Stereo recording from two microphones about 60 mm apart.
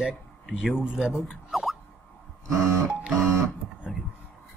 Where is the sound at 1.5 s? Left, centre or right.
Centre.